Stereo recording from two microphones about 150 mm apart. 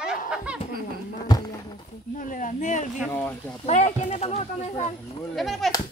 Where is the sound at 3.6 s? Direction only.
50° left (ahead or behind).